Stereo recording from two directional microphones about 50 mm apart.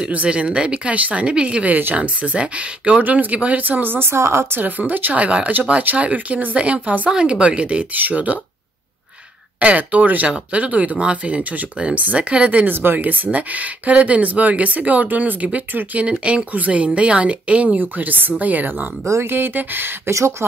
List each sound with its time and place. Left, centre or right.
0.1 s speech: right
1.7 s speech: right
2.0 s speech: right
4.1 s speech: right
4.5 s speech: right
9.6 s speech: right
12.7 s speech: right
16.1 s speech: right
17.7 s speech: right
20.1 s speech: right